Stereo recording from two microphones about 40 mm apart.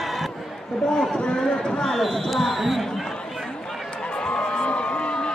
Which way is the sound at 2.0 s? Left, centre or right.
Centre.